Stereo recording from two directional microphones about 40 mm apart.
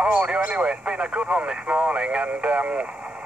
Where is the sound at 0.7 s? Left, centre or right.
Right.